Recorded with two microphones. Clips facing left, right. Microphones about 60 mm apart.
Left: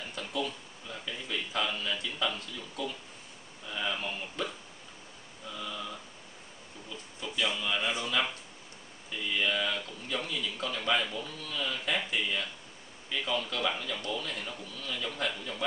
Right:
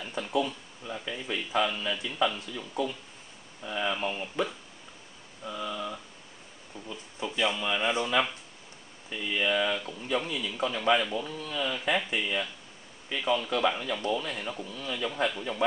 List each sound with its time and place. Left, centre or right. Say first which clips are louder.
0.2 s a man's voice: right 6 dB; centre
6.9 s a man's voice: right 5 dB; right